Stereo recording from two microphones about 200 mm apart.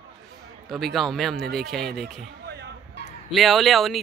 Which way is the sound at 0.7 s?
Centre (ahead or behind).